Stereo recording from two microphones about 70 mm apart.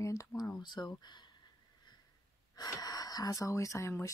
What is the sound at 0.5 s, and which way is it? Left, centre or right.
Speech, left.